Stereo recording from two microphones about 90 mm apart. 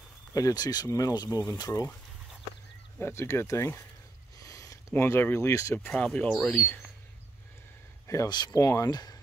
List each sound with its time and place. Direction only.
0.3 s speech: 40° left (ahead or behind)
3.0 s speech: 30° left (ahead or behind)
5.9 s speech: 10° left (ahead or behind)
8.1 s speech: 40° left (ahead or behind)